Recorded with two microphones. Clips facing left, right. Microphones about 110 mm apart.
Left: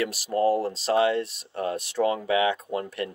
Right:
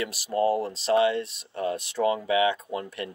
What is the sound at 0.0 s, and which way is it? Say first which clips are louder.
Speech: left 1 dB; 40° left (ahead or behind).